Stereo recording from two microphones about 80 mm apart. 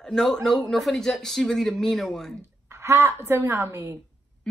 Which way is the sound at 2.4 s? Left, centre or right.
Right.